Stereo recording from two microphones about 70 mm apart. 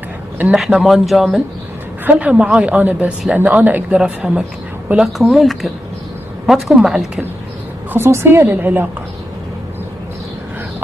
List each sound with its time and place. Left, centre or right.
0.6 s speech: centre
2.0 s a woman's voice: right
4.0 s speech: centre
5.0 s speech: centre
7.9 s a woman's voice: right